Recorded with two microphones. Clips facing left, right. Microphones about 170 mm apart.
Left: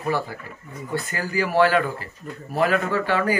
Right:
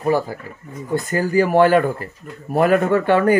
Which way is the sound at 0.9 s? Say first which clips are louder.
Right 8 dB; 45° right (ahead or behind).